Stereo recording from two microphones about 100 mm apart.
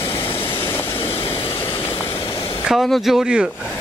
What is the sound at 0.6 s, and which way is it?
Vehicle, 20° left (ahead or behind).